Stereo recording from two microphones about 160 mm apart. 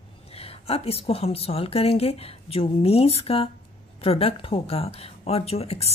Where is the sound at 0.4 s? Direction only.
40° left (ahead or behind).